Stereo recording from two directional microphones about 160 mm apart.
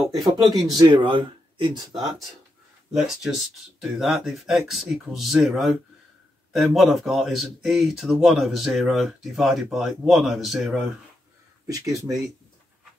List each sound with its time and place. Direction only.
0.0 s speech: 35° right (ahead or behind)
2.0 s speech: centre (ahead or behind)
11.6 s speech: 20° right (ahead or behind)